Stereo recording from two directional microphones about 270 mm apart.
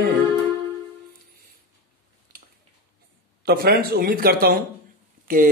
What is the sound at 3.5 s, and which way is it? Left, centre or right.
A man's voice, right.